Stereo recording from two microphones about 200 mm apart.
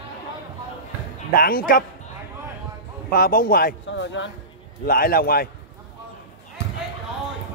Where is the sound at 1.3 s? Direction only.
45° left (ahead or behind).